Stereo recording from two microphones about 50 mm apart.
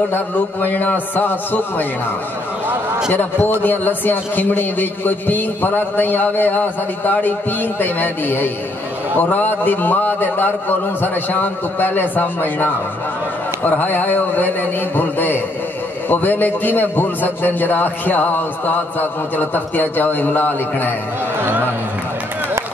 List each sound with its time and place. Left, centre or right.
0.1 s a man's voice: left
3.1 s a man's voice: left